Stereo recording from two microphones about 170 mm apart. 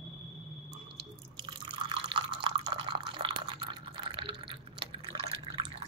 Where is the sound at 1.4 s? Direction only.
30° right (ahead or behind).